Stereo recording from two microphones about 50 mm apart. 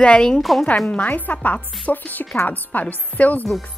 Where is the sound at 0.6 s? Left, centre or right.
Left.